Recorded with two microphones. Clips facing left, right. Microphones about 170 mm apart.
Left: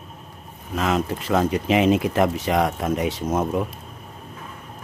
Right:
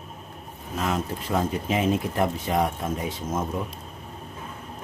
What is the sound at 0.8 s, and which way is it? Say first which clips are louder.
Speech: left 5 dB; 90° left.